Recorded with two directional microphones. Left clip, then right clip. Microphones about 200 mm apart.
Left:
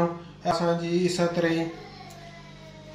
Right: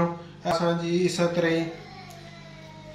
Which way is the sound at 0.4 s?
5° right (ahead or behind).